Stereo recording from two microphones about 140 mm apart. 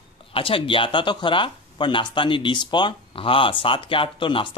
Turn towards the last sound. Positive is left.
turn(degrees=35)  # may be behind; listen again after turning